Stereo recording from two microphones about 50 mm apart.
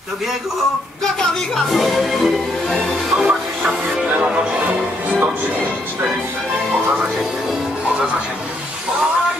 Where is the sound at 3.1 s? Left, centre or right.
Centre.